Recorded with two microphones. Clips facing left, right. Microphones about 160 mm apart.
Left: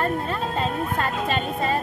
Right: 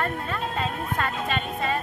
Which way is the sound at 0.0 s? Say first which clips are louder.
Left 4 dB; 30° left (ahead or behind).